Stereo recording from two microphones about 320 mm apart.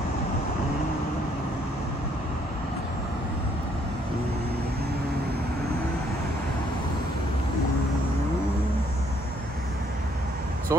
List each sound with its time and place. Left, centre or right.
10.7 s speech: centre